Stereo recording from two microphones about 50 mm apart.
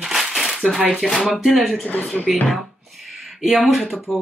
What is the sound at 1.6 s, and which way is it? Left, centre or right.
Speech, centre.